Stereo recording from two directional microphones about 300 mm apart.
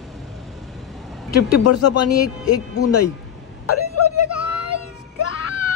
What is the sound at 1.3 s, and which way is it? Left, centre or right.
Speech, left.